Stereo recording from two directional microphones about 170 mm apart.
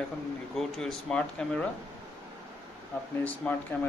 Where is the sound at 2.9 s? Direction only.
10° left (ahead or behind).